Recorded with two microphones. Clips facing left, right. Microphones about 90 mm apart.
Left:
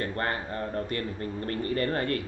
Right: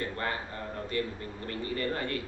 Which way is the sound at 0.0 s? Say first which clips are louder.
Left 3 dB; 50° left (ahead or behind).